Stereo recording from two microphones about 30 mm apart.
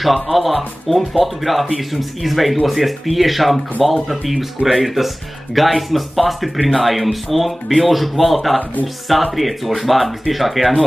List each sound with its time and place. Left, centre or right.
0.0 s speech: centre